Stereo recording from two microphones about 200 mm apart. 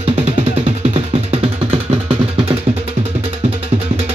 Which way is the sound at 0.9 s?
30° right (ahead or behind).